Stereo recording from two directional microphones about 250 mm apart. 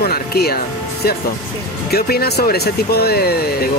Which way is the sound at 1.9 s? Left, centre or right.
Left.